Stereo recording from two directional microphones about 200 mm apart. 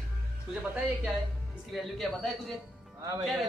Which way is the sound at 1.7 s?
Centre (ahead or behind).